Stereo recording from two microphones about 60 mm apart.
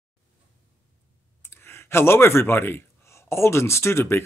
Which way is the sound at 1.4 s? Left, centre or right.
Left.